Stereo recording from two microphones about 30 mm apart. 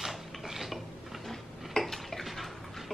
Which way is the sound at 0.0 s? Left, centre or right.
Centre.